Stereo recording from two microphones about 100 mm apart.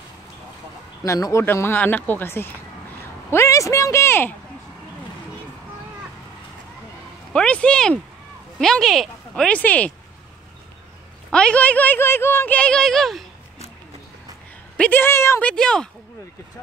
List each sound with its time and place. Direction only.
1.0 s speech: 30° left (ahead or behind)
7.3 s speech: 10° left (ahead or behind)
11.2 s speech: 10° left (ahead or behind)
14.8 s speech: 20° left (ahead or behind)
15.4 s speech: 5° left (ahead or behind)